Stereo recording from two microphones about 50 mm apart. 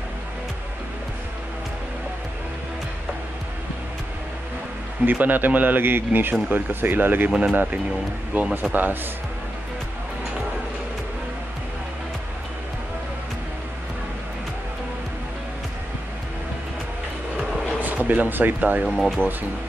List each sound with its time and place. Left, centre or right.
5.0 s speech: right
7.2 s speech: centre
8.3 s speech: right
17.7 s speech: right
19.2 s speech: left